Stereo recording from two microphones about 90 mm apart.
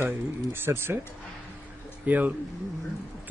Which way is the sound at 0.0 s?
25° right (ahead or behind).